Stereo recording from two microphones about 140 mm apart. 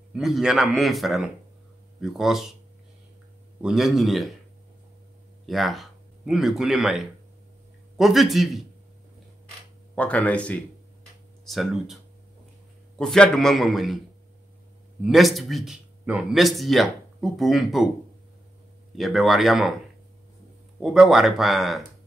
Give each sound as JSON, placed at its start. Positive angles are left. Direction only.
{"t": 0.1, "sound": "speech", "side_deg": -5}
{"t": 3.6, "sound": "speech", "side_deg": 0}
{"t": 5.5, "sound": "speech", "side_deg": 0}
{"t": 9.9, "sound": "speech", "side_deg": 10}
{"t": 11.4, "sound": "speech", "side_deg": 0}
{"t": 15.0, "sound": "speech", "side_deg": 0}
{"t": 18.9, "sound": "speech", "side_deg": 0}
{"t": 20.8, "sound": "speech", "side_deg": -5}